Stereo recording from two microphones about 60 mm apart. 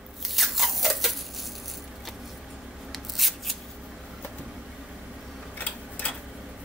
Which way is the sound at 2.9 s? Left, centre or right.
Centre.